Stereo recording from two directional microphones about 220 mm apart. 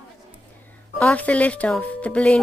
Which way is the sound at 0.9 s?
5° left (ahead or behind).